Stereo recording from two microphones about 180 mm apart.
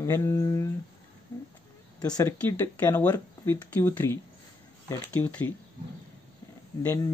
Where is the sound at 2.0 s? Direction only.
20° left (ahead or behind).